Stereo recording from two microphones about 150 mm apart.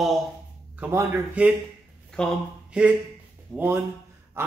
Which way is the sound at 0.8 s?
15° right (ahead or behind).